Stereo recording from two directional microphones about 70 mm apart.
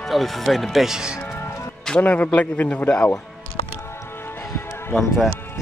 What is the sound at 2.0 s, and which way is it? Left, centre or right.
A man's voice, left.